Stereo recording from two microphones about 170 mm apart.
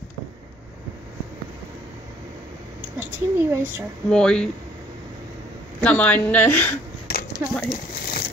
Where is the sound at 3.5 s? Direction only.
15° right (ahead or behind).